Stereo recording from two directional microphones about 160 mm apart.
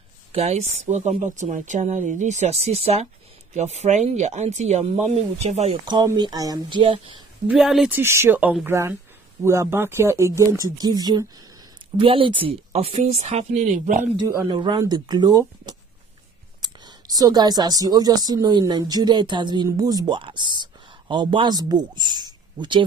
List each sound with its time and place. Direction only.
0.3 s speech: 45° right (ahead or behind)
5.9 s speech: 25° right (ahead or behind)
7.4 s speech: 5° right (ahead or behind)
8.0 s speech: 15° right (ahead or behind); by 13.9 s 55° right (ahead or behind)
14.1 s speech: 25° right (ahead or behind)